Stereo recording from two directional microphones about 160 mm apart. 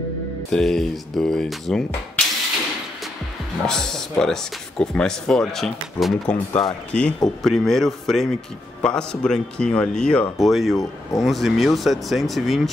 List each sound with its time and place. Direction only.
0.5 s speech: centre (ahead or behind)
3.6 s speech: 5° left (ahead or behind)
10.8 s speech: 20° left (ahead or behind)
11.2 s speech: centre (ahead or behind)